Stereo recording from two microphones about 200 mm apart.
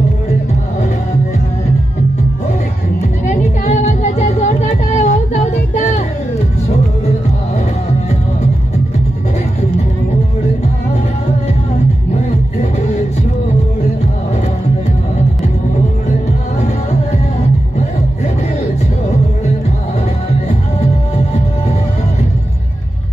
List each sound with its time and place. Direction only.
3.3 s music: 35° left (ahead or behind)